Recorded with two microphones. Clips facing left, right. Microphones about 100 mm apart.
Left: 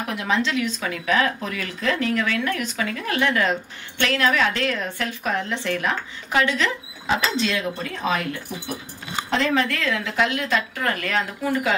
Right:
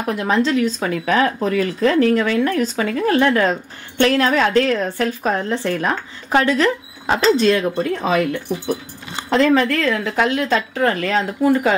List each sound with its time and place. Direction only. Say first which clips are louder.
0.1 s a woman's voice: right 6 dB; 40° right (ahead or behind)
9.3 s a woman's voice: right 7 dB; 40° right (ahead or behind)